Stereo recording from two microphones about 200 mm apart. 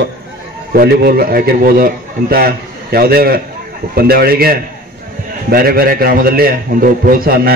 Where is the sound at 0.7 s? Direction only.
50° right (ahead or behind).